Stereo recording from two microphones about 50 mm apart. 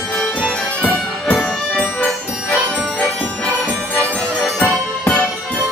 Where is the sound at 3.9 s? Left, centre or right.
Left.